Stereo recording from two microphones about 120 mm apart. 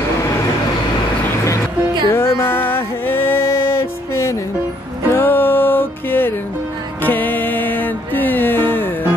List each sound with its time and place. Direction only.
2.0 s music: 20° left (ahead or behind)